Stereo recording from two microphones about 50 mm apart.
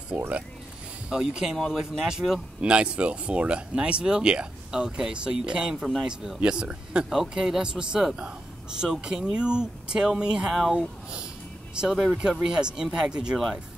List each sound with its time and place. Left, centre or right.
0.1 s speech: right
2.6 s speech: right
7.1 s speech: centre
8.2 s speech: centre